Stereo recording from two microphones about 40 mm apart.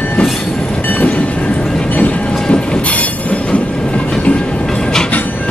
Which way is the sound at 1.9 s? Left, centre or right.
Left.